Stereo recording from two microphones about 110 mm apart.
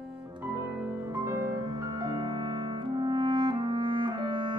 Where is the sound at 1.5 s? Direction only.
40° right (ahead or behind).